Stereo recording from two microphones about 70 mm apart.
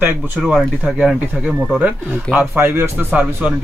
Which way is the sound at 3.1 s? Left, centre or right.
Right.